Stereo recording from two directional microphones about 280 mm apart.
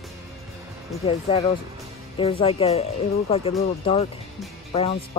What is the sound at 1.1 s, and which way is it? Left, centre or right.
Speech, left.